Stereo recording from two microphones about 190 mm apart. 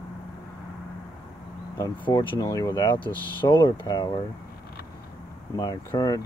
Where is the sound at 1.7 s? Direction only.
15° left (ahead or behind).